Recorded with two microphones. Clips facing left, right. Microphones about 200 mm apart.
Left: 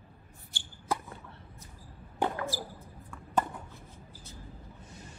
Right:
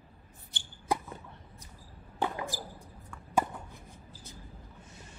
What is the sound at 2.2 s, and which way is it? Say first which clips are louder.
Basketball bounce: left 2 dB; 15° right (ahead or behind).